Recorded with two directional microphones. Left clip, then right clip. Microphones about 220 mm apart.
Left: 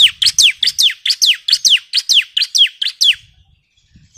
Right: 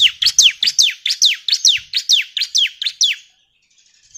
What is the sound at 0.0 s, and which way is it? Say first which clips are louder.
Bird: left 2 dB; 25° left (ahead or behind).